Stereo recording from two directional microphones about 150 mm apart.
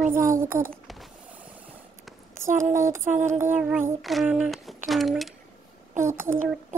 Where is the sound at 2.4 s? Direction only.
20° right (ahead or behind).